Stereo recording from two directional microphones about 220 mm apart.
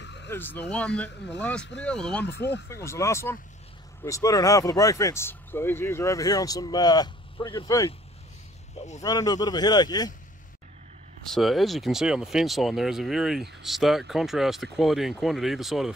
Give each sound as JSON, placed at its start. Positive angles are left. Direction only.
{"t": 0.0, "sound": "a sound", "side_deg": 50}
{"t": 0.3, "sound": "speech", "side_deg": 10}
{"t": 2.2, "sound": "speech", "side_deg": 50}
{"t": 2.7, "sound": "speech", "side_deg": 10}
{"t": 9.0, "sound": "speech", "side_deg": 15}
{"t": 11.3, "sound": "speech", "side_deg": 0}